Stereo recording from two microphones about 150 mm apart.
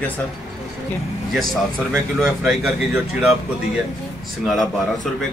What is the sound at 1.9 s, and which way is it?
Speech, centre (ahead or behind).